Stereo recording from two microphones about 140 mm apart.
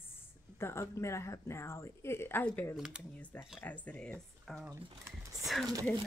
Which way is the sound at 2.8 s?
5° right (ahead or behind).